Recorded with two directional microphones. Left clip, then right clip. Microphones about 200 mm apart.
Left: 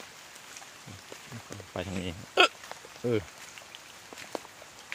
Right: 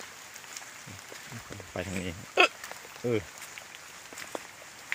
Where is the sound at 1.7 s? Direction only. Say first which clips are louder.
Even; 10° left (ahead or behind).